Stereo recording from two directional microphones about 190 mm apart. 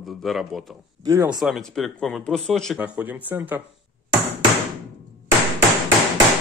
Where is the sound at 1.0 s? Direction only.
15° right (ahead or behind).